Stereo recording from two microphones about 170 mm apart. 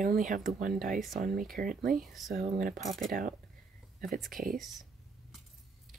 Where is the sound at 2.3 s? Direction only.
55° right (ahead or behind).